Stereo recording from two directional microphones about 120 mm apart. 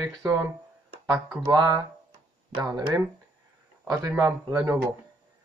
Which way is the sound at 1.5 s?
40° right (ahead or behind).